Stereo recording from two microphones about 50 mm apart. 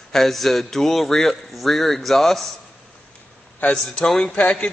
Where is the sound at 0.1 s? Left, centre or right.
Centre.